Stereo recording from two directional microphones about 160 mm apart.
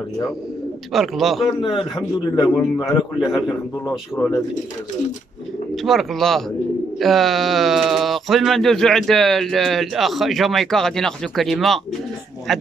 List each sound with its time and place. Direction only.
0.9 s speech: centre (ahead or behind)
1.6 s a man's voice: 30° left (ahead or behind)
5.9 s speech: centre (ahead or behind)